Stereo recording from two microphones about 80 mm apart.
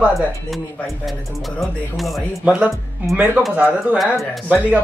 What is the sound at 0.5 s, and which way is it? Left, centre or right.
Speech, centre.